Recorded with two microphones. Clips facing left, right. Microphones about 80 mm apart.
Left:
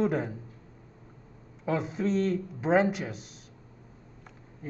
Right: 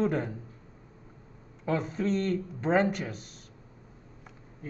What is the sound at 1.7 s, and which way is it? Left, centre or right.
Speech, centre.